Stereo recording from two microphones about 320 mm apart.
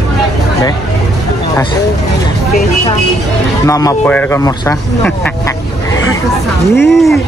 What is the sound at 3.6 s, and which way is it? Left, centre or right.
Speech, centre.